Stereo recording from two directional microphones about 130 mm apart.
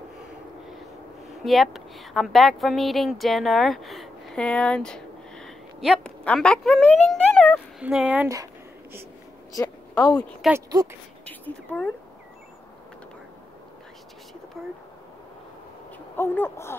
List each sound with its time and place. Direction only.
1.4 s a woman's voice: centre (ahead or behind)
7.8 s speech: 10° right (ahead or behind)
9.6 s a woman's voice: 30° left (ahead or behind)
10.7 s speech: 30° right (ahead or behind)
11.2 s a woman's voice: 10° left (ahead or behind)
16.2 s speech: 20° left (ahead or behind)